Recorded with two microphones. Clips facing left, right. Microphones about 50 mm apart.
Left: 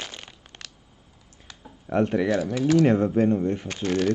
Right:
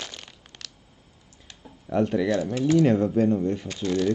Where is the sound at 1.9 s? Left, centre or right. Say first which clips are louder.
Left 1 dB; left.